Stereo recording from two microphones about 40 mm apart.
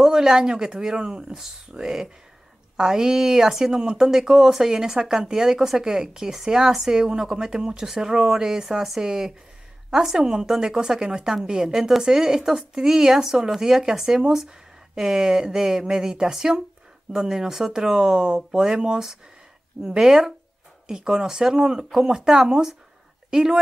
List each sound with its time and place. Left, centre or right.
0.0 s speech: centre